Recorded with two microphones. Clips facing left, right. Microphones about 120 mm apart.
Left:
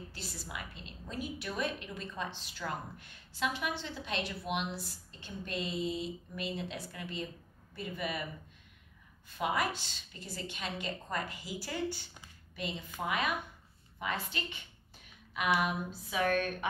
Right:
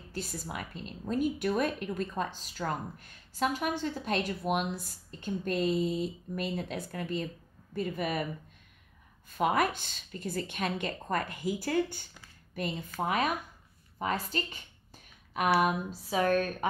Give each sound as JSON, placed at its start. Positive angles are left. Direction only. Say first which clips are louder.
{"t": 0.1, "sound": "a woman's voice", "louder": "right 6 dB", "side_deg": -50}
{"t": 9.4, "sound": "a woman's voice", "louder": "right 5 dB", "side_deg": -50}
{"t": 15.9, "sound": "a woman's voice", "louder": "right 4 dB", "side_deg": -35}